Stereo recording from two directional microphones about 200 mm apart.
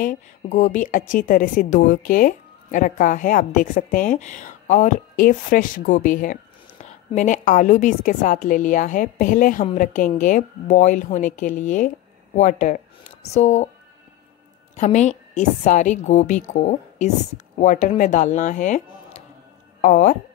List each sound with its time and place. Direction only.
0.0 s a woman's voice: 40° left (ahead or behind)
14.8 s a woman's voice: 35° left (ahead or behind)